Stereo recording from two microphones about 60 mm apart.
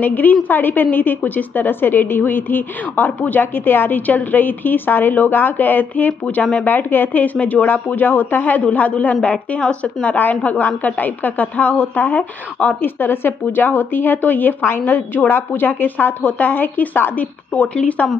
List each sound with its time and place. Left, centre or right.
0.0 s a woman's voice: left
17.7 s a woman's voice: centre